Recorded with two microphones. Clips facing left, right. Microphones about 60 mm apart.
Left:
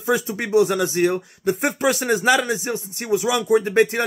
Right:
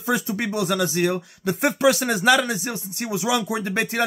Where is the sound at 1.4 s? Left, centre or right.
Centre.